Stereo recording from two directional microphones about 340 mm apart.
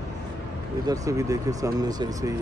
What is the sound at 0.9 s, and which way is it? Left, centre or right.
Speech, centre.